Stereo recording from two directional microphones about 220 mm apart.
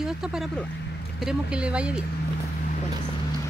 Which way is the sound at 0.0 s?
Centre (ahead or behind).